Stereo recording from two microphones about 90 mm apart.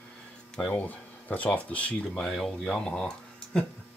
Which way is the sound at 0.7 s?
15° left (ahead or behind).